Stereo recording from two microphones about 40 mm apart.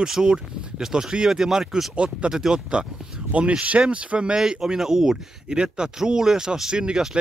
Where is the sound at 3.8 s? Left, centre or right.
Right.